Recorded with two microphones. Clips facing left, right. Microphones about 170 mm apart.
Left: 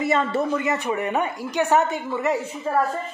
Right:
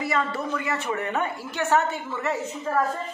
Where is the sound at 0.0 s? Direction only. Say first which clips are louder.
Left 5 dB; 25° left (ahead or behind).